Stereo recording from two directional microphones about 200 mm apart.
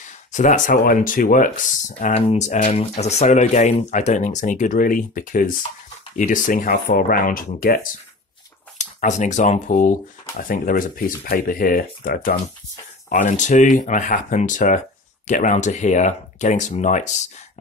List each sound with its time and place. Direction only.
0.0 s speech: 35° left (ahead or behind)